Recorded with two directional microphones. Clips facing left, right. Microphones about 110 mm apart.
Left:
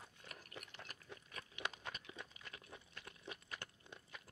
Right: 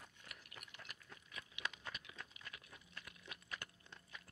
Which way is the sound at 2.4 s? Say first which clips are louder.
Left 2 dB; 30° left (ahead or behind).